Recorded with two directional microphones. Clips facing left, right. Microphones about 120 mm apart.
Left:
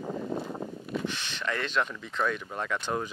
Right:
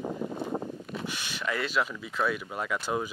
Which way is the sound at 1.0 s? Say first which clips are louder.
Left 1 dB; 10° right (ahead or behind).